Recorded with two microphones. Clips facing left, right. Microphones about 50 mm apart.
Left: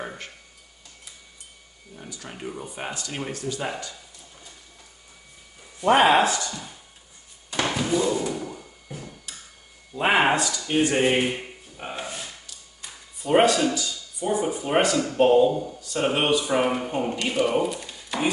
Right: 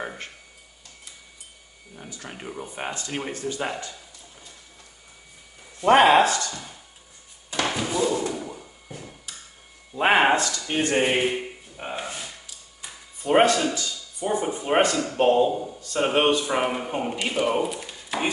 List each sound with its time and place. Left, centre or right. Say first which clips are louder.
2.2 s speech: left 1 dB; centre
3.3 s speech: right 1 dB; right
5.8 s speech: right 2 dB; centre
6.2 s speech: even; centre
7.6 s a sound: left 1 dB; centre
9.9 s speech: right 1 dB; centre
10.3 s speech: even; centre
11.0 s a sound: even; centre
14.8 s speech: left 2 dB; centre